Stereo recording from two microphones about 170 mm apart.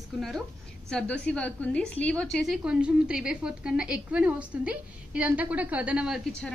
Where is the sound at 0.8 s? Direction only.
5° left (ahead or behind).